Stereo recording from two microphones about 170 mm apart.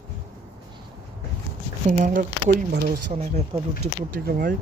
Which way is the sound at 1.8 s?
45° right (ahead or behind).